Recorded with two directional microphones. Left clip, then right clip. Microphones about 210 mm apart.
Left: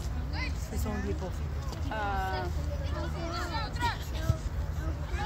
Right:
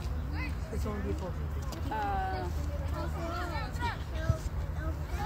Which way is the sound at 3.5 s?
30° left (ahead or behind).